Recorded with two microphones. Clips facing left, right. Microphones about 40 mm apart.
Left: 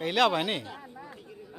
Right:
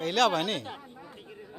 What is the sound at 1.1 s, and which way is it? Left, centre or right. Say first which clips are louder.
Chatter: even; right.